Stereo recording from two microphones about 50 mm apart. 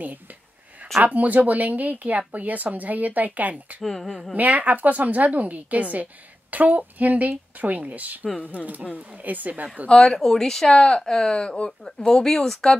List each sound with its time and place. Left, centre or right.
0.0 s a sound: right
1.0 s speech: right
3.8 s speech: centre
4.4 s speech: right
9.8 s speech: centre